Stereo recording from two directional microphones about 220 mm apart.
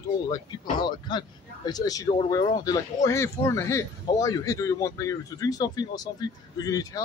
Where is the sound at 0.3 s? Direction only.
20° left (ahead or behind).